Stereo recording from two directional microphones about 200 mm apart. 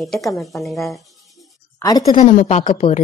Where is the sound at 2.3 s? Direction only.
30° left (ahead or behind).